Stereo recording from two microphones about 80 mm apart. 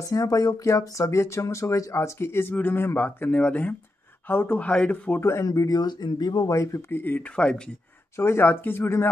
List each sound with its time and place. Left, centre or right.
0.1 s speech: left; by 5.2 s centre
5.2 s speech: left
6.5 s speech: left
7.0 s speech: left
8.2 s speech: left